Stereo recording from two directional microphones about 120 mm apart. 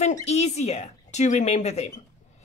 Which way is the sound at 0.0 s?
65° left (ahead or behind).